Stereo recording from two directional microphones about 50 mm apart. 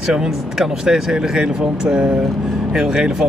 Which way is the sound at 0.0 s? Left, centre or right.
Centre.